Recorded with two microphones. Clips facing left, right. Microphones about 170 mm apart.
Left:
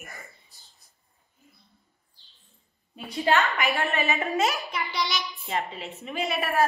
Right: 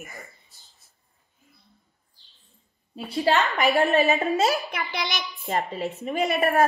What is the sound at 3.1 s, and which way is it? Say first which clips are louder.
Speech: right 2 dB; 35° right (ahead or behind).